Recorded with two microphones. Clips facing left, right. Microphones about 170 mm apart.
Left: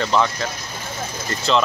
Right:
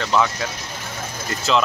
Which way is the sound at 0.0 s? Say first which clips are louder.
Left 1 dB; centre (ahead or behind).